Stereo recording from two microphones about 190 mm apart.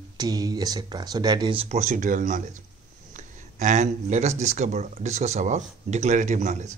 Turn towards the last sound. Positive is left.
turn(degrees=-40)  # may be behind; listen again after turning